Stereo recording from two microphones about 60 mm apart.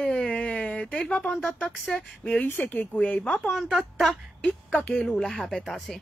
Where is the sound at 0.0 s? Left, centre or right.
Centre.